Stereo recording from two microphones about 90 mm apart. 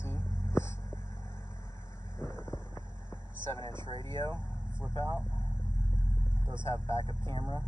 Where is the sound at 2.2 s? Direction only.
30° left (ahead or behind).